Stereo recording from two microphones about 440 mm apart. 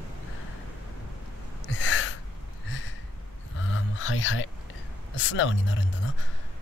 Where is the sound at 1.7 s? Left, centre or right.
Left.